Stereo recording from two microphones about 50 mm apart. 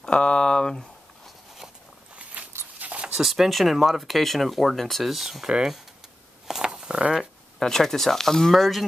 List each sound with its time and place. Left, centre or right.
0.0 s a sound: centre
2.1 s walk: right
2.8 s dog: right
3.2 s speech: centre
6.4 s a sound: centre
7.5 s speech: centre